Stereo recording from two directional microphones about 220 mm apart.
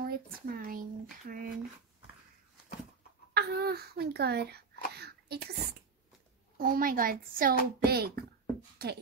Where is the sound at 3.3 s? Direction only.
45° right (ahead or behind).